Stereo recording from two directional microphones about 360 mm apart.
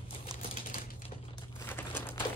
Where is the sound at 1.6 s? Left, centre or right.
Centre.